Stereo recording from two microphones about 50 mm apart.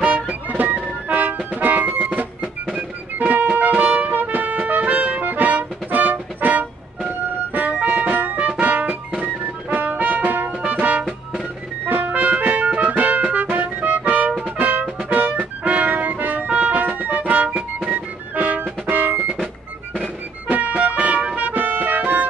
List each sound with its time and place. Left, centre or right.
0.0 s music: right
3.7 s music: right
4.1 s music: right
16.4 s music: right
20.4 s music: right